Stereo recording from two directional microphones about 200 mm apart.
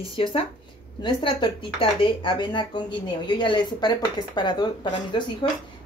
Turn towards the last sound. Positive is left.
turn(degrees=25)  # may be behind; listen again after turning